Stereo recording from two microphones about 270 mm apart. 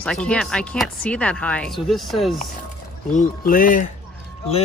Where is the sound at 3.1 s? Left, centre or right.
Left.